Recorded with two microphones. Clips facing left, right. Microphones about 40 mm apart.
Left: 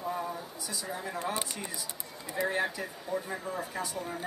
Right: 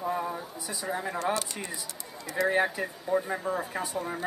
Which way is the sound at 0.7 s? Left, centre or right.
Right.